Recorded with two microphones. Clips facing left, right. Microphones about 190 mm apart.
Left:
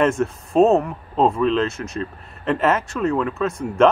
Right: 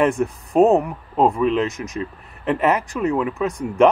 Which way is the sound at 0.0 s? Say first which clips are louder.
Even; 15° right (ahead or behind).